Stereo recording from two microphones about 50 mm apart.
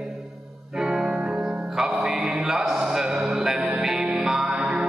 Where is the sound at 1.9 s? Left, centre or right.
Centre.